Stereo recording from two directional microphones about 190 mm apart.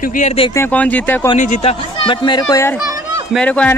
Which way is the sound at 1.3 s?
35° left (ahead or behind).